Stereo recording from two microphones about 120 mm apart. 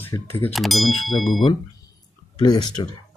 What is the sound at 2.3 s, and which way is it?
Speech, 40° left (ahead or behind).